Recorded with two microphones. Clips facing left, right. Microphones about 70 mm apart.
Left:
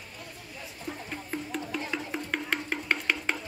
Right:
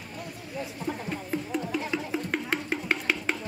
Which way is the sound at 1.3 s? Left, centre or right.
Centre.